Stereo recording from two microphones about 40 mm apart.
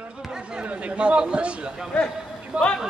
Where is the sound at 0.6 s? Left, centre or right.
Right.